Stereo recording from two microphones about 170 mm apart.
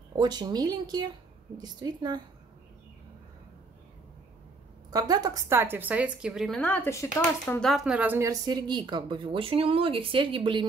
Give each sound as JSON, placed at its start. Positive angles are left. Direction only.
{"t": 0.1, "sound": "speech", "side_deg": -25}
{"t": 4.9, "sound": "a woman's voice", "side_deg": -20}
{"t": 6.6, "sound": "speech", "side_deg": 10}